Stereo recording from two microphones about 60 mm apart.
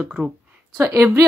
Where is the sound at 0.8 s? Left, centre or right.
Right.